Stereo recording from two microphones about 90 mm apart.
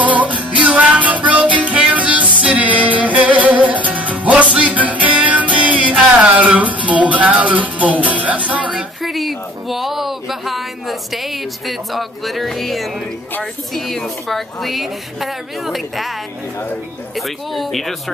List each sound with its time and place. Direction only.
0.1 s music: 15° right (ahead or behind)
9.0 s speech: centre (ahead or behind)
17.6 s speech: centre (ahead or behind)